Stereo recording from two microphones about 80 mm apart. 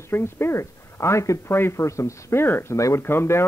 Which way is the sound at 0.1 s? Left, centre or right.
Left.